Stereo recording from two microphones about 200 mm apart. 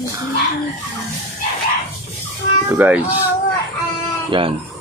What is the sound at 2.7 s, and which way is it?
Speech, 5° right (ahead or behind).